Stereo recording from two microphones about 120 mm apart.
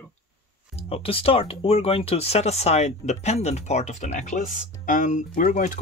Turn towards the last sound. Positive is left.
turn(degrees=90)